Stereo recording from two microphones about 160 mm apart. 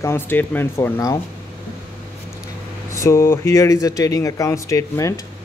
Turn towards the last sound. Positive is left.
turn(degrees=20)  # may be behind; listen again after turning